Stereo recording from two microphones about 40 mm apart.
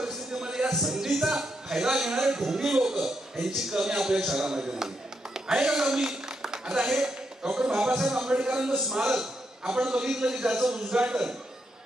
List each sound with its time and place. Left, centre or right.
0.3 s music: centre
0.7 s a man's voice: centre